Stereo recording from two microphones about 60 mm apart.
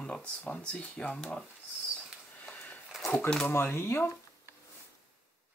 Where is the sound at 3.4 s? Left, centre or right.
Left.